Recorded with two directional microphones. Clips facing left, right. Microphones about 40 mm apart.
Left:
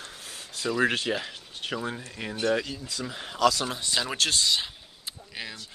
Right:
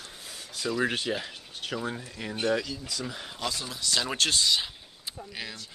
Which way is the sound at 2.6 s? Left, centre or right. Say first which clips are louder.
Left 1 dB; left.